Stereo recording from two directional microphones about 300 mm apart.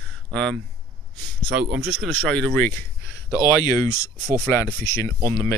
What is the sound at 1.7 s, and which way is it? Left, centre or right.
Speech, centre.